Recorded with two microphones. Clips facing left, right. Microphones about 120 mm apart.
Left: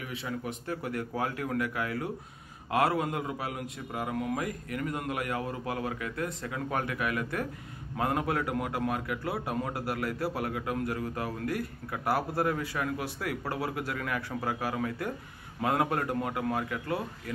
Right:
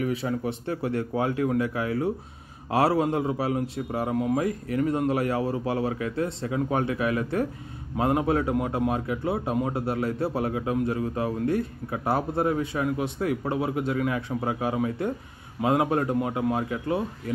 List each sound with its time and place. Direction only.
0.0 s a man's voice: 40° right (ahead or behind)